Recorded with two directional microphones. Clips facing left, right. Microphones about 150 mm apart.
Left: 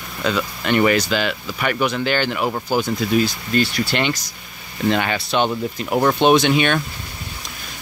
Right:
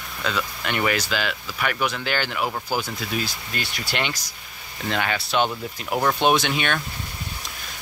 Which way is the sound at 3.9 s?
5° right (ahead or behind).